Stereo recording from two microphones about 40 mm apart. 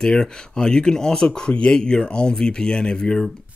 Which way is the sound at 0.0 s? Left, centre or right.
Left.